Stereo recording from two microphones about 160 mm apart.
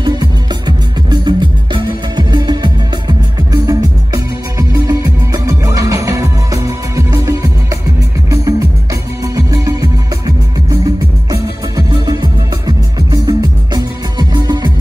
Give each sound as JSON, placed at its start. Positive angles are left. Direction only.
{"t": 0.0, "sound": "music", "side_deg": -25}